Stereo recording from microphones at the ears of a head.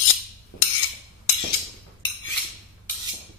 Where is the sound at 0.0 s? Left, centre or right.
Left.